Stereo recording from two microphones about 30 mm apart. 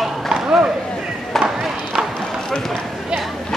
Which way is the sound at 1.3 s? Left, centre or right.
Centre.